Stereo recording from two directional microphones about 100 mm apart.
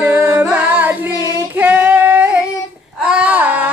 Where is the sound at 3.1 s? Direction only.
10° right (ahead or behind).